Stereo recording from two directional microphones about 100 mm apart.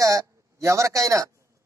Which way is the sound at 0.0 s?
30° right (ahead or behind).